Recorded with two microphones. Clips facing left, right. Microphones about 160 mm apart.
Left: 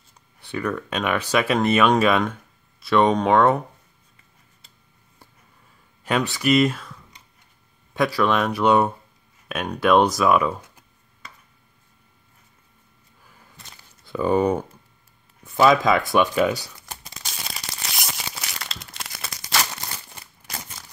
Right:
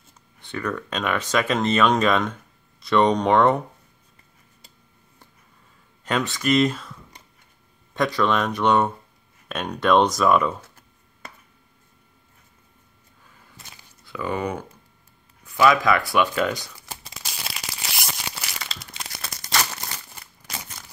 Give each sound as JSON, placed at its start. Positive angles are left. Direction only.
{"t": 0.4, "sound": "speech", "side_deg": 10}
{"t": 6.0, "sound": "speech", "side_deg": 10}
{"t": 14.0, "sound": "speech", "side_deg": 30}
{"t": 16.6, "sound": "crumpling", "side_deg": -5}
{"t": 17.9, "sound": "tearing", "side_deg": 0}